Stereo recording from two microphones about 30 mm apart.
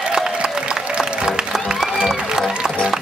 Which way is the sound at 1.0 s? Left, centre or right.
Centre.